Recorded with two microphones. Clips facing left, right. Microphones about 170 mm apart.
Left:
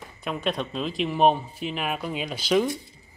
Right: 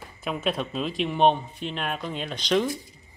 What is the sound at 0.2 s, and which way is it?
Speech, centre (ahead or behind).